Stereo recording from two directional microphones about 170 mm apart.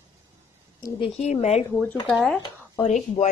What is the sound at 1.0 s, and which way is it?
Speech, 40° left (ahead or behind).